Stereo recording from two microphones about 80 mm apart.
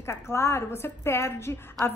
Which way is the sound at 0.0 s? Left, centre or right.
Left.